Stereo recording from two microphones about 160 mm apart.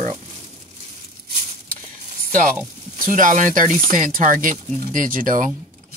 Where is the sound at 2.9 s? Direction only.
55° right (ahead or behind).